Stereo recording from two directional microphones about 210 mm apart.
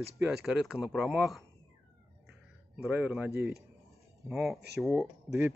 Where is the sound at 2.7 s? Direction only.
10° right (ahead or behind).